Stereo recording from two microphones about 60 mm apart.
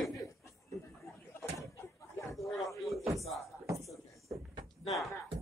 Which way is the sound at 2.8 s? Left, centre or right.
Centre.